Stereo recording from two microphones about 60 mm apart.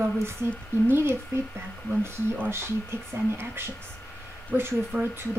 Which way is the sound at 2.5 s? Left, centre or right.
Right.